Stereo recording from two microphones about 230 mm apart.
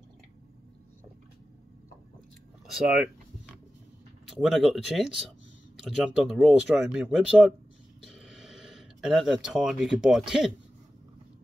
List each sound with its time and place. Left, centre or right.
2.6 s speech: centre
4.3 s speech: centre